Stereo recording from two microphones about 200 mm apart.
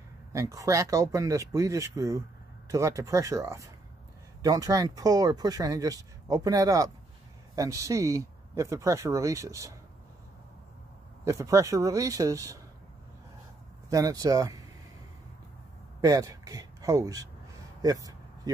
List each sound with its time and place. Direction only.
0.3 s speech: 15° right (ahead or behind)
11.2 s speech: 15° right (ahead or behind)
13.8 s speech: 15° right (ahead or behind)
16.0 s speech: 15° right (ahead or behind)
17.8 s a sound: 20° right (ahead or behind)